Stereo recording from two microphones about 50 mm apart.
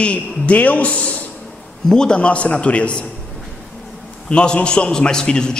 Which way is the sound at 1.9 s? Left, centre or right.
Centre.